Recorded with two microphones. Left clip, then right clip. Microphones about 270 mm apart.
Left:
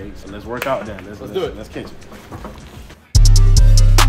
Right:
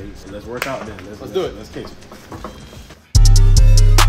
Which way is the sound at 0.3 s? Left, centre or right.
Centre.